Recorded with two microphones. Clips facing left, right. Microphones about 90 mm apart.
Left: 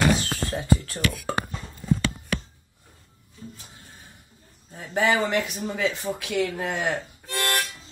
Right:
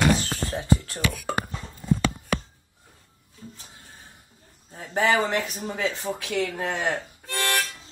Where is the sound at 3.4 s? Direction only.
5° right (ahead or behind).